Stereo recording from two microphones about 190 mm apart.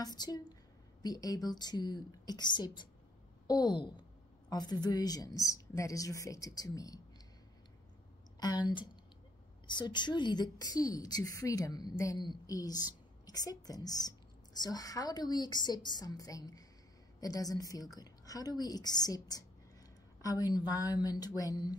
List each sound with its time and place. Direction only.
0.0 s a woman's voice: 20° left (ahead or behind)
9.7 s a woman's voice: 25° left (ahead or behind)